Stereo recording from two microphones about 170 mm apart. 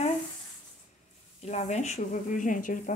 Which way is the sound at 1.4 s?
40° left (ahead or behind).